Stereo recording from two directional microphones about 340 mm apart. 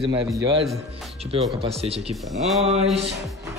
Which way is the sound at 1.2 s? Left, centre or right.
Centre.